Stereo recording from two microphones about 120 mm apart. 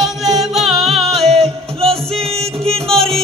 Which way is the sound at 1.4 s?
55° right (ahead or behind).